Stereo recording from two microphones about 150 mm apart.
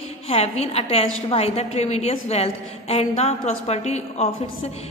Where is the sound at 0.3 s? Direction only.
45° left (ahead or behind).